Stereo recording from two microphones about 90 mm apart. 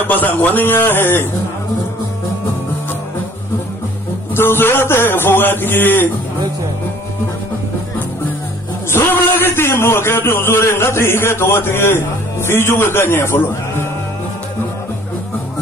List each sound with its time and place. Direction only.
0.0 s a man's voice: 20° left (ahead or behind)
4.4 s a man's voice: 25° left (ahead or behind)
8.9 s a man's voice: 25° left (ahead or behind)